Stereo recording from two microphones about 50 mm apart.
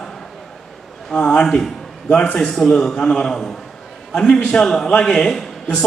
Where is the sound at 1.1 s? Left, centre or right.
Centre.